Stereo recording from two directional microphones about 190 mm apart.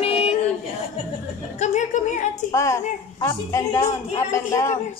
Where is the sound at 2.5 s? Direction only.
15° left (ahead or behind).